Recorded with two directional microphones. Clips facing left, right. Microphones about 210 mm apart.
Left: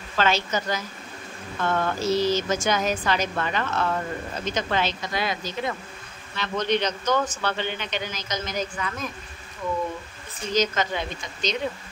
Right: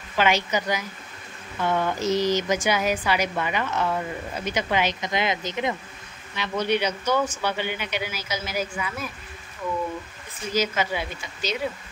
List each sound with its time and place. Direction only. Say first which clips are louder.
0.1 s speech: right 1 dB; 15° right (ahead or behind)
10.5 s speech: left 1 dB; 10° right (ahead or behind)